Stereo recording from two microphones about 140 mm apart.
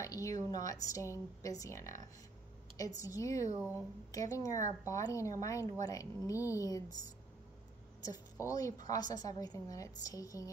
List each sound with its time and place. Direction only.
0.0 s speech: 20° left (ahead or behind)
3.0 s speech: 25° left (ahead or behind)
8.0 s a woman's voice: 25° left (ahead or behind)